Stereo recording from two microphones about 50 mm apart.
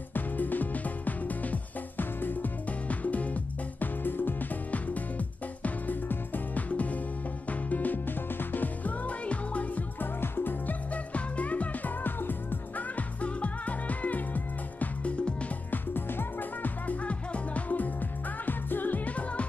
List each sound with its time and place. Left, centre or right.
0.1 s music: left
3.8 s music: left
5.6 s music: left
10.2 s music: left
10.7 s music: left